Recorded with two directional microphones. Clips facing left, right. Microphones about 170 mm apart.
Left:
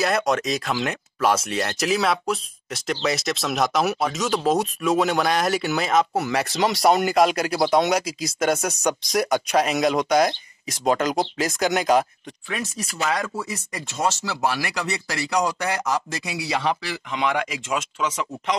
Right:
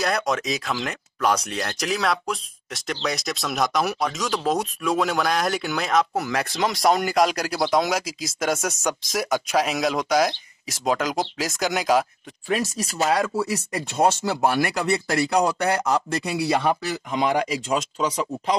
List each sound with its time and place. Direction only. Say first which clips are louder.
0.3 s speech: left 2 dB; centre (ahead or behind)
12.7 s speech: right 1 dB; 40° right (ahead or behind)
13.5 s speech: right 5 dB; 60° right (ahead or behind); by 18.6 s 35° right (ahead or behind)